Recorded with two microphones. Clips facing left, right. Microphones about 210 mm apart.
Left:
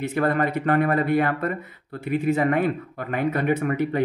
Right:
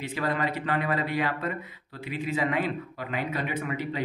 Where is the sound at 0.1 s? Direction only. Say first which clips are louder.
Left 6 dB; 50° left (ahead or behind).